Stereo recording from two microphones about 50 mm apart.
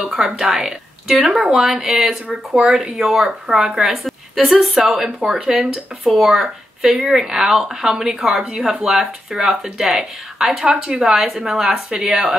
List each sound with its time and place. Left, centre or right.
0.0 s speech: centre
3.0 s speech: centre